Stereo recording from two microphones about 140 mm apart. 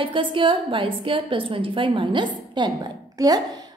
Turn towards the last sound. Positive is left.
turn(degrees=-25)  # may be behind; listen again after turning